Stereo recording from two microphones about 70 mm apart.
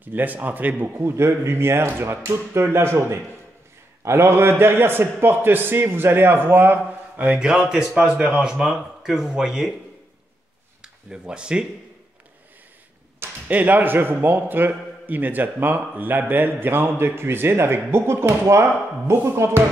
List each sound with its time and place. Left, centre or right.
0.0 s a man's voice: right
7.2 s speech: centre
10.8 s speech: centre
13.5 s a man's voice: right